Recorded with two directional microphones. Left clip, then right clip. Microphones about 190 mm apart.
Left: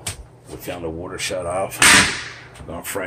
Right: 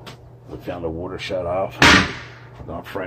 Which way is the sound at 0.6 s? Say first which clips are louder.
Right 1 dB; 5° right (ahead or behind).